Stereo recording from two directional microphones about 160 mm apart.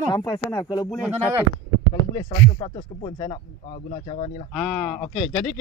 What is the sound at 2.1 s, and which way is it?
Speech, 35° left (ahead or behind).